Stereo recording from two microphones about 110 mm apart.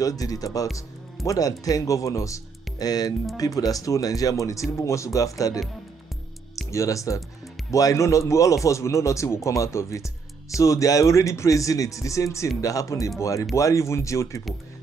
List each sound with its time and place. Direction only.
0.0 s speech: 35° left (ahead or behind)
6.7 s speech: 30° left (ahead or behind)